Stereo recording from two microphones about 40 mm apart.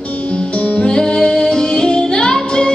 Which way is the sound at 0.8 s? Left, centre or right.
Left.